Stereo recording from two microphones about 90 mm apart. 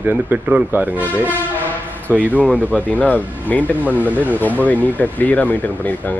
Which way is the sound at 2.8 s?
15° left (ahead or behind).